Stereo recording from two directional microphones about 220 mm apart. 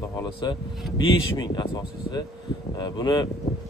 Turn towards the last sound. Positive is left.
turn(degrees=20)  # may be behind; listen again after turning